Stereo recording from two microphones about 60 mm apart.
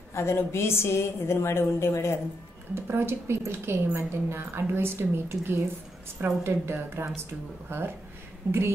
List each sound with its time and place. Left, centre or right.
0.1 s a woman's voice: left
2.7 s a woman's voice: right